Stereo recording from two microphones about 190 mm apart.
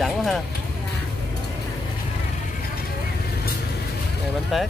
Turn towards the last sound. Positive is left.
turn(degrees=0)  # may be behind; listen again after turning